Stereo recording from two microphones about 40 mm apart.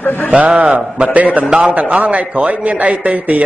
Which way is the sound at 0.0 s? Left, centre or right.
Left.